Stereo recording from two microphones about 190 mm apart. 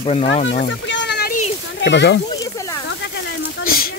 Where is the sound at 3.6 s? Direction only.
50° left (ahead or behind).